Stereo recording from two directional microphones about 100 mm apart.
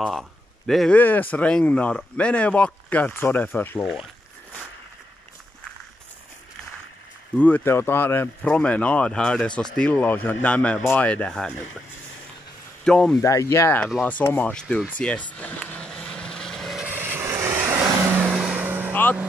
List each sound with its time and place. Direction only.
0.0 s speech: centre (ahead or behind)
0.9 s speech: 15° left (ahead or behind)
7.3 s speech: 15° left (ahead or behind)
12.8 s speech: 5° left (ahead or behind)
13.2 s speech: 35° left (ahead or behind); by 15.2 s 15° left (ahead or behind)
15.3 s vehicle: 15° left (ahead or behind)
16.8 s vehicle: 20° right (ahead or behind)
18.2 s vehicle: 5° right (ahead or behind)
18.6 s vehicle: 20° right (ahead or behind)
18.9 s vehicle: 20° left (ahead or behind)